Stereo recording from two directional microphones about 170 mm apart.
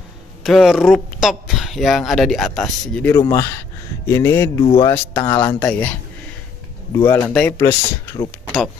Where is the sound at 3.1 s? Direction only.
20° left (ahead or behind).